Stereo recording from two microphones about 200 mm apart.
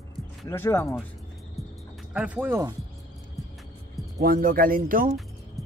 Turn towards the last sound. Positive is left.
turn(degrees=-45)  # may be behind; listen again after turning